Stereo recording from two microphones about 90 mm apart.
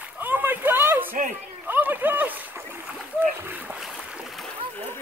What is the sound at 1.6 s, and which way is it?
Splash, 20° right (ahead or behind).